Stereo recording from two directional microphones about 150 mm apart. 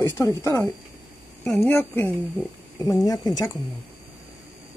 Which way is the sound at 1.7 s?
15° left (ahead or behind).